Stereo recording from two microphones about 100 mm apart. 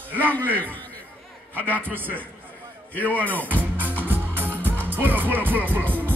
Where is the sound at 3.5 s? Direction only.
15° right (ahead or behind).